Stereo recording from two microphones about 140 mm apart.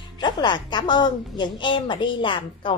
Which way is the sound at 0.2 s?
30° left (ahead or behind).